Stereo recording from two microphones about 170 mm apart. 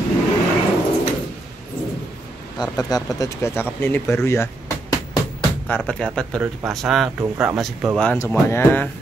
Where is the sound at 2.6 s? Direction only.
20° left (ahead or behind).